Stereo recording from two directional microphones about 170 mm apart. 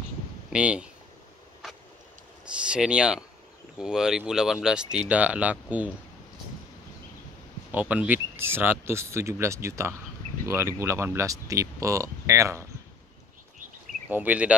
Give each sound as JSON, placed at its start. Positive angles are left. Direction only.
{"t": 0.5, "sound": "speech", "side_deg": -5}
{"t": 2.4, "sound": "speech", "side_deg": -5}
{"t": 7.7, "sound": "speech", "side_deg": -10}
{"t": 14.1, "sound": "speech", "side_deg": -10}